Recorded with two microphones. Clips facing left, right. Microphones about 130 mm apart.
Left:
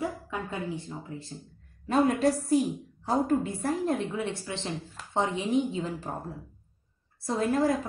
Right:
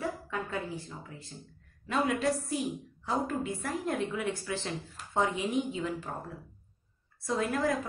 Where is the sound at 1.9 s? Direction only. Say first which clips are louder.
Left 5 dB; 40° left (ahead or behind).